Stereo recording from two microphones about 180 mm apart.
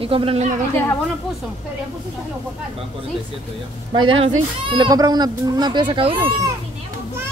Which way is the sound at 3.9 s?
25° right (ahead or behind).